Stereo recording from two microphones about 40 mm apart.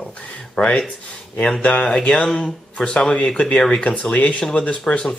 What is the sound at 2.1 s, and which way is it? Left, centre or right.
Speech, left.